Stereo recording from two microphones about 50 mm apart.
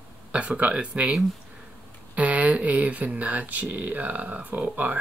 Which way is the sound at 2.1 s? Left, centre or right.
Right.